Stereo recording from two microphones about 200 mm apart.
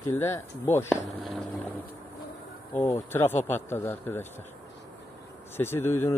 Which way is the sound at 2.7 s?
10° left (ahead or behind).